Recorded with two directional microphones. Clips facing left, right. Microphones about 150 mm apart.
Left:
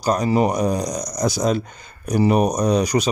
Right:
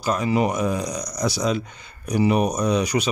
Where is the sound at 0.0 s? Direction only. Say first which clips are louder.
Left 3 dB; 40° left (ahead or behind).